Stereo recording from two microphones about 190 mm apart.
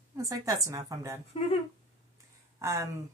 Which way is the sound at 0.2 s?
20° right (ahead or behind).